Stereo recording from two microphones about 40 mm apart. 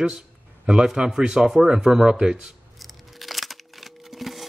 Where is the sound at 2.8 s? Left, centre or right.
Centre.